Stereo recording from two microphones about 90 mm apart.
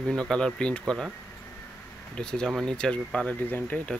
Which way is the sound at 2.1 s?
10° left (ahead or behind).